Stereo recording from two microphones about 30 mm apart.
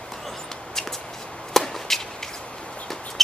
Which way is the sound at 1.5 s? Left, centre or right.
Centre.